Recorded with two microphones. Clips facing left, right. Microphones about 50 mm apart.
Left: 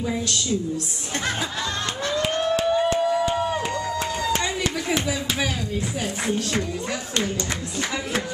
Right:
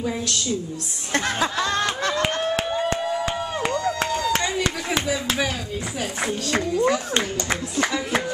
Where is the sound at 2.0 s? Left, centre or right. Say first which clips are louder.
Right 2 dB; right.